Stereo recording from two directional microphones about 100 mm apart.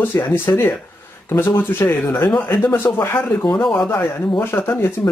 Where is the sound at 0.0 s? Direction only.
20° left (ahead or behind).